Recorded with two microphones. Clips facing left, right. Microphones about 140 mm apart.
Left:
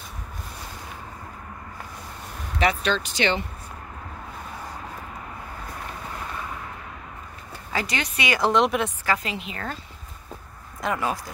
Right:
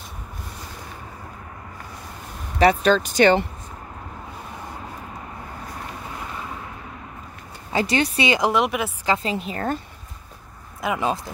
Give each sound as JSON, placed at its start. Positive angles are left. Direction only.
{"t": 2.6, "sound": "speech", "side_deg": -40}
{"t": 7.7, "sound": "speech", "side_deg": -30}
{"t": 8.4, "sound": "a woman's voice", "side_deg": -10}
{"t": 9.0, "sound": "speech", "side_deg": -25}
{"t": 9.3, "sound": "speech", "side_deg": -40}
{"t": 10.8, "sound": "speech", "side_deg": -5}